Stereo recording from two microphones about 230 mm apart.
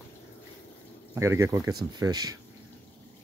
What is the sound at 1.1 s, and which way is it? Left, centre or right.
Speech, centre.